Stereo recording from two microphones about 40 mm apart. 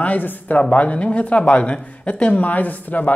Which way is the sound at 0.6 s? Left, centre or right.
Left.